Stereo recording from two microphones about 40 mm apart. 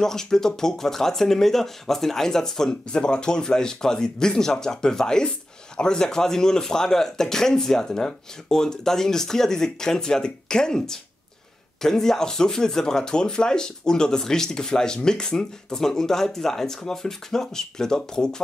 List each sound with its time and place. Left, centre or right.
0.0 s speech: centre